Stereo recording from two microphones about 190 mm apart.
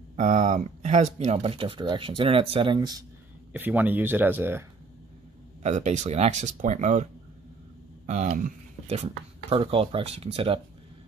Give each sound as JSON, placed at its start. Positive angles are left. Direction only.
{"t": 0.1, "sound": "speech", "side_deg": -40}
{"t": 3.5, "sound": "speech", "side_deg": -10}
{"t": 5.6, "sound": "speech", "side_deg": -35}
{"t": 8.1, "sound": "speech", "side_deg": -40}